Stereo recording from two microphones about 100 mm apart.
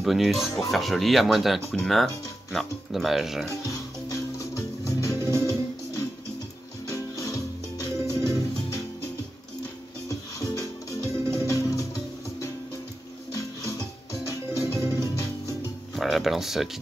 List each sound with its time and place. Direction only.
0.0 s speech: centre (ahead or behind)
3.6 s music: 35° left (ahead or behind)
5.2 s music: 25° right (ahead or behind)
6.9 s music: 35° left (ahead or behind)
10.0 s music: 35° left (ahead or behind)
13.3 s music: 35° left (ahead or behind)
15.9 s music: centre (ahead or behind)